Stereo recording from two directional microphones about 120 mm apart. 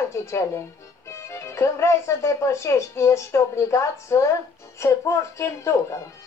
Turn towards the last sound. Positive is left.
turn(degrees=25)  # may be behind; listen again after turning